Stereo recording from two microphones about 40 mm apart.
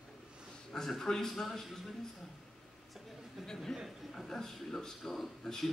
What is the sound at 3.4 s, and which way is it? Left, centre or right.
A man's voice, centre.